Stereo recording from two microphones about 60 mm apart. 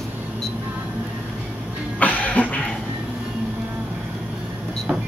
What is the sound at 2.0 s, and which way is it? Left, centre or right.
Music, left.